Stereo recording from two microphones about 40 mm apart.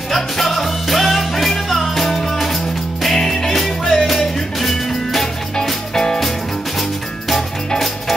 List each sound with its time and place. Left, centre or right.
0.1 s music: centre
6.8 s music: centre